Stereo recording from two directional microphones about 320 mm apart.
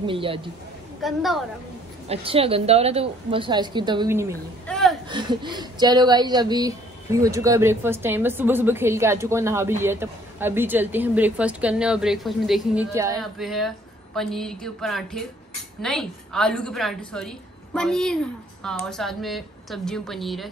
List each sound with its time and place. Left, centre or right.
0.0 s speech: centre
1.0 s a woman's voice: centre
2.0 s speech: centre
4.6 s a sound: centre
5.0 s a woman's voice: centre